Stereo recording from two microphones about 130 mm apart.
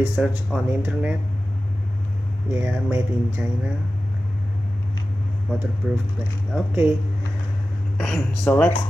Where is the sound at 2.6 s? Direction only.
15° right (ahead or behind).